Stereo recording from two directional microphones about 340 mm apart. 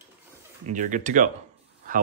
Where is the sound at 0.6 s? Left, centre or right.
Right.